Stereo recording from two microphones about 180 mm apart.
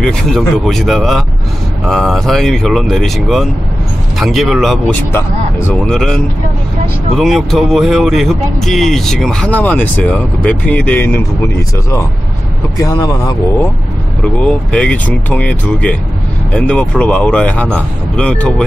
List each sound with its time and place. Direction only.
0.0 s speech: centre (ahead or behind)
5.1 s speech: 15° left (ahead or behind)
5.9 s speech: 5° left (ahead or behind); by 13.4 s 20° left (ahead or behind)
14.2 s speech: 5° left (ahead or behind)